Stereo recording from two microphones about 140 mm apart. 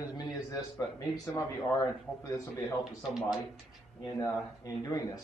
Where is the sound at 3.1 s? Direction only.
Centre (ahead or behind).